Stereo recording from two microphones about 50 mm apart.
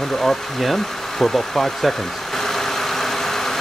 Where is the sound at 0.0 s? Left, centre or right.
Centre.